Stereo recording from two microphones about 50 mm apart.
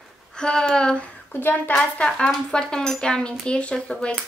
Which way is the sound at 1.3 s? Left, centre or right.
Left.